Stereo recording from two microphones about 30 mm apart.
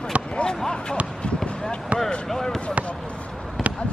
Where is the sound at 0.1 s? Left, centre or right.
Right.